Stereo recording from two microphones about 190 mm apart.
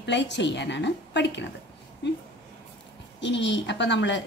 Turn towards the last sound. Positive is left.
turn(degrees=70)  # may be behind; listen again after turning